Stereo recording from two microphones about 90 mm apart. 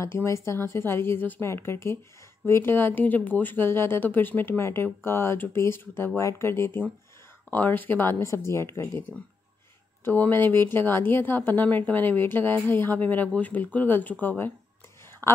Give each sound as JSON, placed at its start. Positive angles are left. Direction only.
{"t": 0.0, "sound": "speech", "side_deg": 30}
{"t": 10.0, "sound": "speech", "side_deg": 20}
{"t": 15.2, "sound": "a sound", "side_deg": 25}